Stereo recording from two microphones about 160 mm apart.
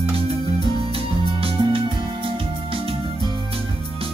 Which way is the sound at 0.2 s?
35° right (ahead or behind).